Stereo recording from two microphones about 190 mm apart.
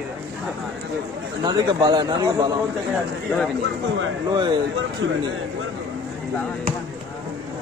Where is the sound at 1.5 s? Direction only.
25° right (ahead or behind).